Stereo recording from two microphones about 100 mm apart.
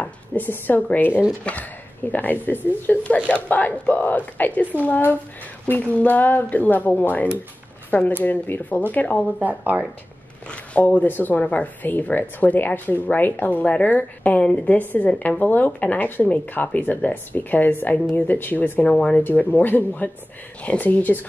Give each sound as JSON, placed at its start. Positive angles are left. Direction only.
{"t": 0.0, "sound": "speech", "side_deg": 15}
{"t": 9.4, "sound": "speech", "side_deg": -15}
{"t": 10.5, "sound": "speech", "side_deg": 15}